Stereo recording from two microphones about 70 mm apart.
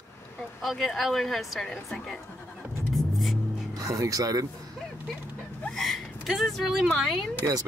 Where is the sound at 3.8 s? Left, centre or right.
Right.